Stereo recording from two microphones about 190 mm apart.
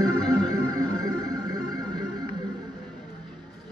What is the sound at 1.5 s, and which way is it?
Music, 20° right (ahead or behind).